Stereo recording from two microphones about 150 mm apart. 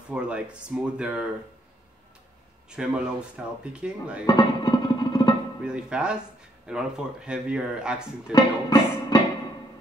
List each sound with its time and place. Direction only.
0.1 s speech: 5° right (ahead or behind)
2.7 s speech: 5° right (ahead or behind)
4.3 s music: 25° left (ahead or behind)
5.6 s speech: 5° right (ahead or behind)
8.3 s music: 25° left (ahead or behind)